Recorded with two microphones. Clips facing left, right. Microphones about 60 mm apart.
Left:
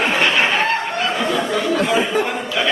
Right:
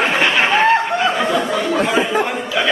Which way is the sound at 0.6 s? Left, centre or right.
Centre.